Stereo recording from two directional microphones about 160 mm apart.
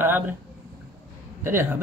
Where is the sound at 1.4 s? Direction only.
15° right (ahead or behind).